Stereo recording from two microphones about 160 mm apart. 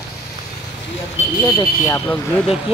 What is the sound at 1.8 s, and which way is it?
Speech, 20° left (ahead or behind).